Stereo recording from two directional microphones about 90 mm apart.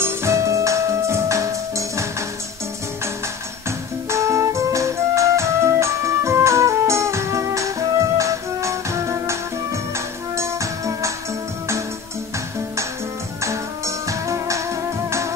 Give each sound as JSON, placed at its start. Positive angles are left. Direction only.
{"t": 0.0, "sound": "music", "side_deg": -30}
{"t": 4.1, "sound": "music", "side_deg": -30}
{"t": 13.4, "sound": "music", "side_deg": -35}